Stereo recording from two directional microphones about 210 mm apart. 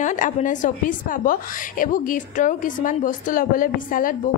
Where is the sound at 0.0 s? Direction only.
35° left (ahead or behind).